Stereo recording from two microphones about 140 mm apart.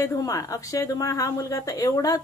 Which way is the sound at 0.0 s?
25° left (ahead or behind).